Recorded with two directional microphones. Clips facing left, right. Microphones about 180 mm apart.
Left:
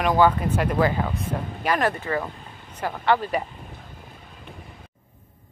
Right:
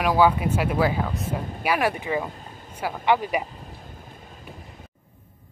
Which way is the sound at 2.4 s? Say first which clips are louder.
Right 2 dB; 40° right (ahead or behind).